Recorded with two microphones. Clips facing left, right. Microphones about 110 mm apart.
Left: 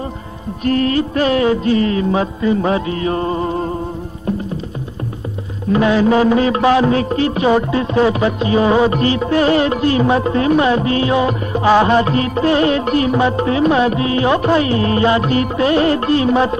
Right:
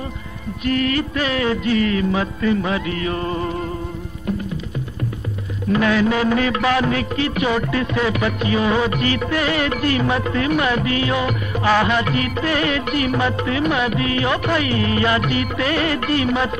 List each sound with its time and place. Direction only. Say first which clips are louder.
0.7 s music: left 4 dB; 35° left (ahead or behind)
5.7 s music: left 4 dB; 25° left (ahead or behind)